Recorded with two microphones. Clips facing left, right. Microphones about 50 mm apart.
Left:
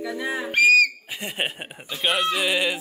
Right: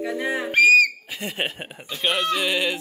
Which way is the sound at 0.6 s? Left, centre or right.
Centre.